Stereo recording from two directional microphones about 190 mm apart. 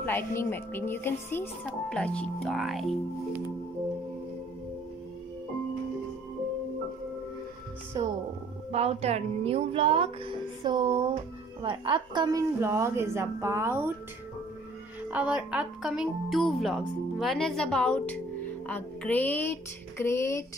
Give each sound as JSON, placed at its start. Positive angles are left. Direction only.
{"t": 0.0, "sound": "a sound", "side_deg": 10}
{"t": 1.7, "sound": "speech", "side_deg": 5}
{"t": 8.0, "sound": "speech", "side_deg": -20}
{"t": 8.7, "sound": "a woman's voice", "side_deg": -35}
{"t": 15.0, "sound": "speech", "side_deg": -5}
{"t": 18.7, "sound": "a sound", "side_deg": 10}